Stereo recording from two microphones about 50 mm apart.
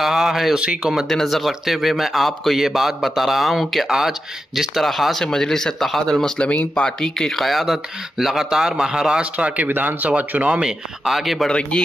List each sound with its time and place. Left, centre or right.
0.0 s speech: centre
9.2 s speech: right
9.7 s speech: right
10.6 s speech: centre
11.4 s a man's voice: centre